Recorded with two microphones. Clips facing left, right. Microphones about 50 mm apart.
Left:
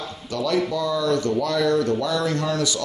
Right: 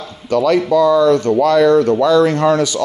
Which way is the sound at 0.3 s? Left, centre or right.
Right.